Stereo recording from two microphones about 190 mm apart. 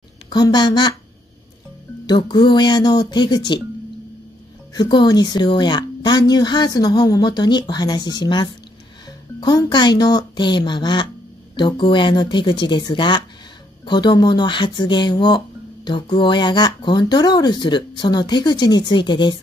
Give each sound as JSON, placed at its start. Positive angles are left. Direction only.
{"t": 0.3, "sound": "speech", "side_deg": 20}
{"t": 2.0, "sound": "speech", "side_deg": 25}
{"t": 4.7, "sound": "speech", "side_deg": 20}